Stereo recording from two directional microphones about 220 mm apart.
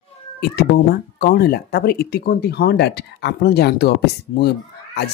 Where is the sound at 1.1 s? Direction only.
45° left (ahead or behind).